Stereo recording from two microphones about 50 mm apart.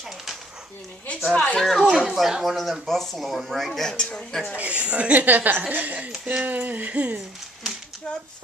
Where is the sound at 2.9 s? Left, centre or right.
Centre.